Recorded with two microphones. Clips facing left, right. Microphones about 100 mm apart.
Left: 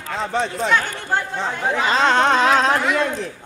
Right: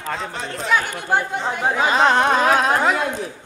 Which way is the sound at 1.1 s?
15° right (ahead or behind).